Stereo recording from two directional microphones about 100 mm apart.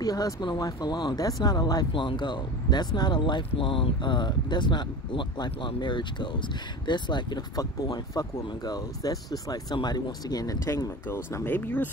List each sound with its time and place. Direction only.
0.0 s speech: 40° left (ahead or behind)
1.9 s speech: 55° left (ahead or behind); by 10.9 s 35° left (ahead or behind)
11.1 s speech: 20° left (ahead or behind)